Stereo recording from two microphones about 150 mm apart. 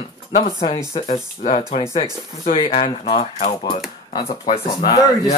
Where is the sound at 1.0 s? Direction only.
45° left (ahead or behind).